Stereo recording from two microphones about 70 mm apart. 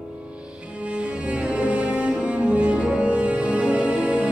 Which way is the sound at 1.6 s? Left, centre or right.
Centre.